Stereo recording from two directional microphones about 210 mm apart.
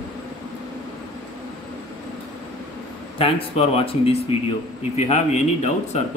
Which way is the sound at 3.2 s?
25° left (ahead or behind).